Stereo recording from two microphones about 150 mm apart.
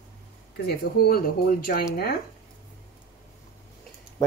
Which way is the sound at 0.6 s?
85° left.